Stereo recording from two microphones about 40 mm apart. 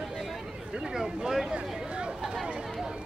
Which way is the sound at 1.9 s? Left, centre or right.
Right.